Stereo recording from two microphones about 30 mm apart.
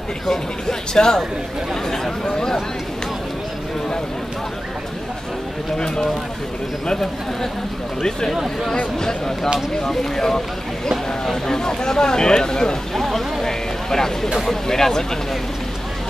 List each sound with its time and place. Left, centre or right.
0.3 s speech: left
10.1 s speech: centre
11.5 s speech: left
12.9 s a sound: centre
14.4 s speech: centre